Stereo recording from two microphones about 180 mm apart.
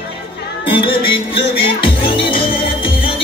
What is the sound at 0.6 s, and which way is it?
Music, 30° left (ahead or behind).